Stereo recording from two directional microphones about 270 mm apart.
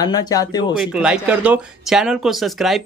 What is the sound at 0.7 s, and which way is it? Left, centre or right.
Speech, centre.